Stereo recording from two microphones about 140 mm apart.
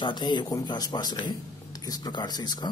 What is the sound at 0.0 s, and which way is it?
A man's voice, 35° left (ahead or behind).